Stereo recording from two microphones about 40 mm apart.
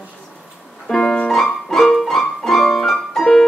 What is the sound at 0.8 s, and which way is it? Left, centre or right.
Music, centre.